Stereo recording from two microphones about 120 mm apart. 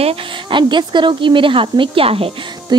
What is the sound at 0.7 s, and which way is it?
Speech, 40° right (ahead or behind).